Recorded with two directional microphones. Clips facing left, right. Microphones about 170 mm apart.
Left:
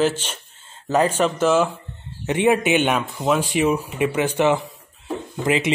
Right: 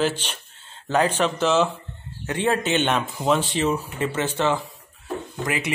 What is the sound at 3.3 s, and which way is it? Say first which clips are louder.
Speech: left 3 dB; 10° left (ahead or behind).